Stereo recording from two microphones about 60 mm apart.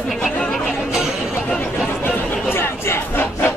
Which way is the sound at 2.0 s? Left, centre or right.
Left.